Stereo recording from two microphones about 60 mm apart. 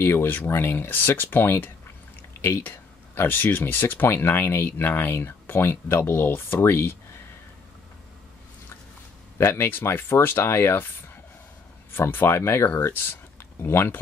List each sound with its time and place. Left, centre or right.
0.0 s speech: left
9.4 s speech: left
11.9 s speech: left